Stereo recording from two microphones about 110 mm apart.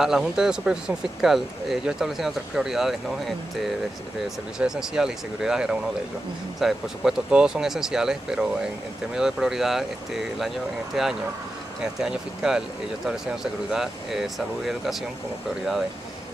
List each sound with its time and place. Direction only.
0.0 s speech: 5° right (ahead or behind)